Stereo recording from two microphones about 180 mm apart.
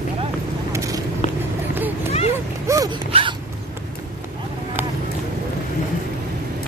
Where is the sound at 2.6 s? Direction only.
20° right (ahead or behind).